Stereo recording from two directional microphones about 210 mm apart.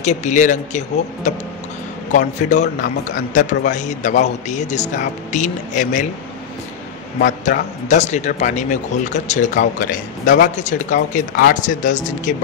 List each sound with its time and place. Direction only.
0.0 s a man's voice: 35° left (ahead or behind)
7.2 s a man's voice: 40° left (ahead or behind)